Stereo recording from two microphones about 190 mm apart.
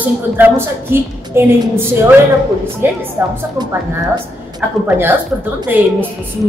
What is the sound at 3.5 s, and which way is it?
Speech, 20° right (ahead or behind).